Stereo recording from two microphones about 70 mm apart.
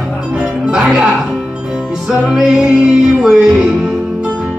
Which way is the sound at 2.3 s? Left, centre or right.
Centre.